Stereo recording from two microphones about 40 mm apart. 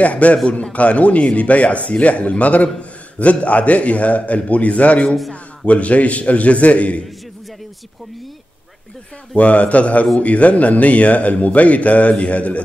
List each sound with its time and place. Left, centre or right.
0.0 s speech: left
9.4 s speech: left